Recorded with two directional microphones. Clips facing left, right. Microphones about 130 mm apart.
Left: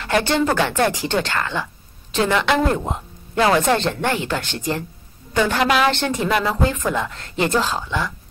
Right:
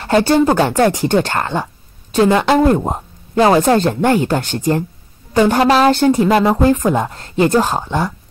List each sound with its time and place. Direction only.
0.0 s speech: 35° right (ahead or behind)
2.1 s speech: 30° right (ahead or behind)